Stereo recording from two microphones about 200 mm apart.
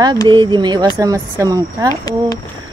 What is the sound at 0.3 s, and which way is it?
Speech, 25° right (ahead or behind).